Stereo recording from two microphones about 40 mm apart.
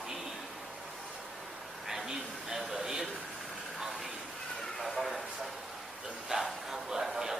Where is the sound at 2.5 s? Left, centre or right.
Centre.